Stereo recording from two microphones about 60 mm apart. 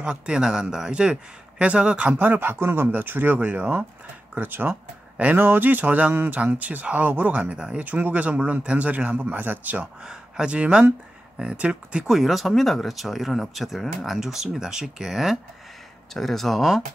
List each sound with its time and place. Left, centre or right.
0.0 s speech: centre
2.1 s speech: right
4.4 s speech: right
10.0 s speech: centre
12.2 s speech: centre